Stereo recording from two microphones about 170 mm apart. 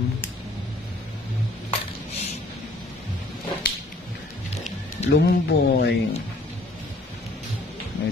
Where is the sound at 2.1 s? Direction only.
40° left (ahead or behind).